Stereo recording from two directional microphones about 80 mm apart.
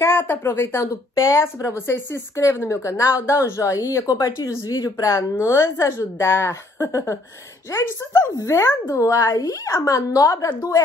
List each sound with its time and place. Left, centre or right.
0.0 s a woman's voice: left